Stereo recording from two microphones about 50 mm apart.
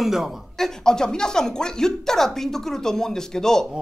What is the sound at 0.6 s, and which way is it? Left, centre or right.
Speech, centre.